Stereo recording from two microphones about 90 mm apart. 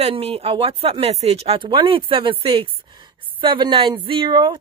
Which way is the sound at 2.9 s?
60° right (ahead or behind).